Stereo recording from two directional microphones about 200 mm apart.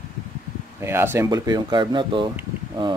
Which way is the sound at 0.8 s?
10° right (ahead or behind).